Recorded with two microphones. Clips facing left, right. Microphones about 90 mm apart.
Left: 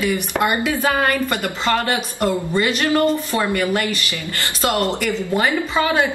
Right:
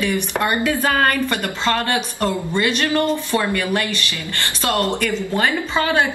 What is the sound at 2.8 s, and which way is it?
A woman's voice, 25° left (ahead or behind).